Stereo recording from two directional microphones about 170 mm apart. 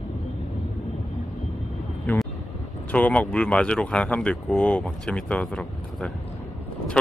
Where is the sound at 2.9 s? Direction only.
10° left (ahead or behind).